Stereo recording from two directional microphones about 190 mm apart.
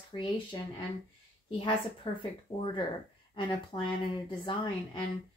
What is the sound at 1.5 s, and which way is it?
Speech, 25° left (ahead or behind).